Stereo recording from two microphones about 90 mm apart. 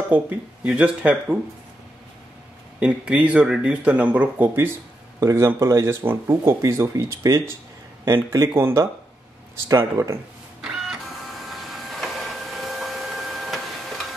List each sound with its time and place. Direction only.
0.7 s speech: 15° right (ahead or behind)
2.8 s speech: 15° right (ahead or behind)
5.2 s speech: 35° right (ahead or behind)
10.6 s printer: 5° right (ahead or behind)